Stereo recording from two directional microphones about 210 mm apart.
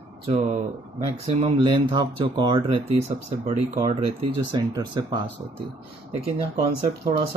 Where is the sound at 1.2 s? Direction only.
20° right (ahead or behind).